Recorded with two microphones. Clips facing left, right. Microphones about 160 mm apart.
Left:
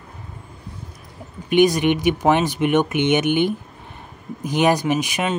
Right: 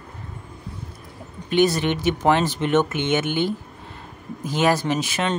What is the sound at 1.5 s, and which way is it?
Speech, 15° left (ahead or behind).